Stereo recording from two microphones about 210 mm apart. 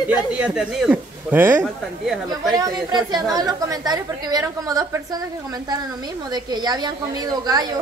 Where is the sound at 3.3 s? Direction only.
15° right (ahead or behind).